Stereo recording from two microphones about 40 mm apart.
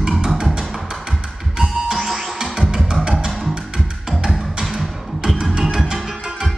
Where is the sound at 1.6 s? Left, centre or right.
Centre.